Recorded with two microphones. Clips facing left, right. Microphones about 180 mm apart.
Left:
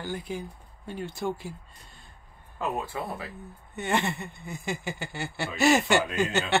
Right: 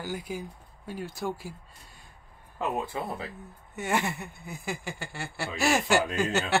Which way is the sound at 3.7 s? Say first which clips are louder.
Left 1 dB; 5° right (ahead or behind).